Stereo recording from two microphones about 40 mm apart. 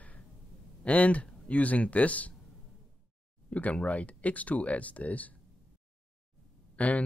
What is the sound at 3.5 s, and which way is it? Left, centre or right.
Speech, left.